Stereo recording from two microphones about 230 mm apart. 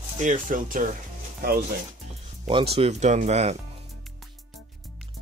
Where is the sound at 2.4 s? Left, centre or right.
Right.